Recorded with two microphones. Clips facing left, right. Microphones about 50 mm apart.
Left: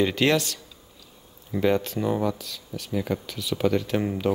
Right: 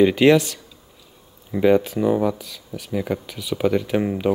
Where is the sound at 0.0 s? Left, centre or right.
Centre.